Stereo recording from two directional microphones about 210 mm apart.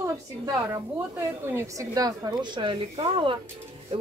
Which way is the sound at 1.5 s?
15° right (ahead or behind).